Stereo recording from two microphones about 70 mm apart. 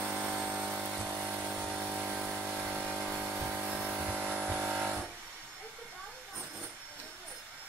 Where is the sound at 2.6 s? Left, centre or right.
Right.